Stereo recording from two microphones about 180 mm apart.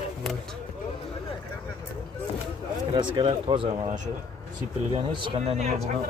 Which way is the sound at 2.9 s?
25° right (ahead or behind).